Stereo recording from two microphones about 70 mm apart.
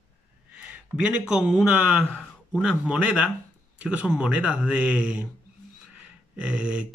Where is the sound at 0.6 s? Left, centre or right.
Centre.